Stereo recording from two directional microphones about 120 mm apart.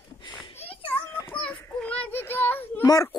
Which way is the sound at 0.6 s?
55° left (ahead or behind).